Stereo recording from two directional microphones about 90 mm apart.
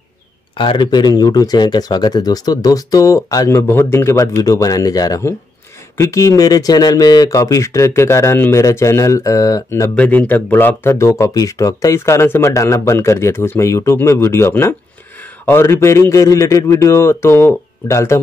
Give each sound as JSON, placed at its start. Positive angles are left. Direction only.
{"t": 0.6, "sound": "speech", "side_deg": 60}
{"t": 3.4, "sound": "speech", "side_deg": 30}
{"t": 4.4, "sound": "speech", "side_deg": 40}
{"t": 9.9, "sound": "speech", "side_deg": 15}